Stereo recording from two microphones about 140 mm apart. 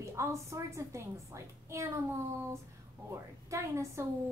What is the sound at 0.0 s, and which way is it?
A woman's voice, 20° right (ahead or behind).